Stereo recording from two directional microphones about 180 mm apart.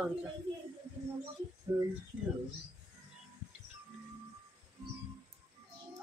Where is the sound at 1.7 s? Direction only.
20° right (ahead or behind).